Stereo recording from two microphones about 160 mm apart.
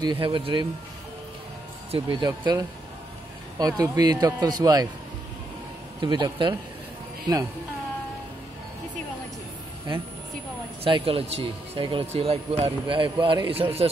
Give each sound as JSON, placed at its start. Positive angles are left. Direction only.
{"t": 0.2, "sound": "speech", "side_deg": -30}
{"t": 1.9, "sound": "a man's voice", "side_deg": -30}
{"t": 5.9, "sound": "a man's voice", "side_deg": -25}
{"t": 10.8, "sound": "speech", "side_deg": -35}